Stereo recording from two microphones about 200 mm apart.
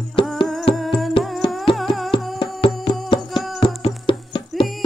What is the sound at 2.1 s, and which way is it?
Music, 25° left (ahead or behind).